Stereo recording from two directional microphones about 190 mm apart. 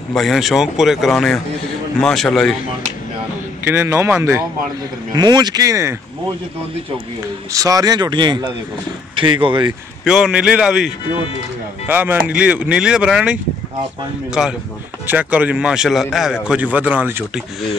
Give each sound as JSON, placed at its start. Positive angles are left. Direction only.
{"t": 0.1, "sound": "speech", "side_deg": 0}
{"t": 3.6, "sound": "speech", "side_deg": -10}
{"t": 7.5, "sound": "speech", "side_deg": -20}
{"t": 10.0, "sound": "speech", "side_deg": 0}
{"t": 11.9, "sound": "speech", "side_deg": -10}